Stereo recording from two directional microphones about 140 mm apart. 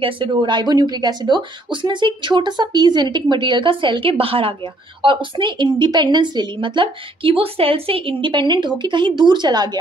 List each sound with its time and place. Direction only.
0.0 s speech: 35° right (ahead or behind)